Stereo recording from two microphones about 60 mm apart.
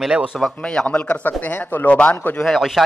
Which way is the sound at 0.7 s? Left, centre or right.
Centre.